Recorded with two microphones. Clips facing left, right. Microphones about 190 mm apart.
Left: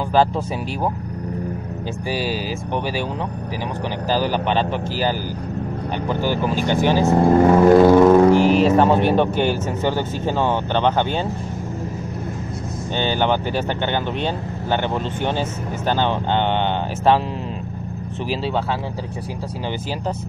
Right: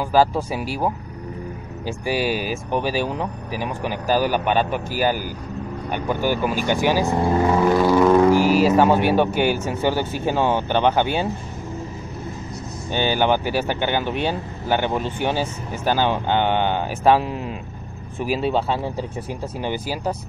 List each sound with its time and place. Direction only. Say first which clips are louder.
2.0 s speech: right 2 dB; 15° right (ahead or behind)
4.1 s speech: right 1 dB; 15° right (ahead or behind)
7.1 s speech: left 5 dB; 50° left (ahead or behind)
8.0 s music: left 3 dB; 25° left (ahead or behind)
8.5 s speech: left 1 dB; 5° right (ahead or behind)
12.9 s speech: right 1 dB; 10° right (ahead or behind)